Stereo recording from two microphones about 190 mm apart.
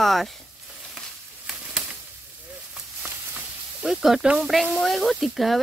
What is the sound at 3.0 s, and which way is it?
Snake, 5° right (ahead or behind).